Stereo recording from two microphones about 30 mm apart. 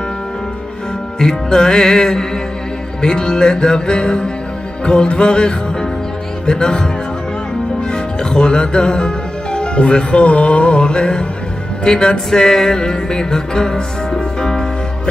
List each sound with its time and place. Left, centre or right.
1.2 s music: left
7.9 s speech: left
11.8 s music: left